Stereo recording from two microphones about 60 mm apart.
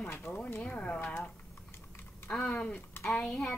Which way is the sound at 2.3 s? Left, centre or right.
Centre.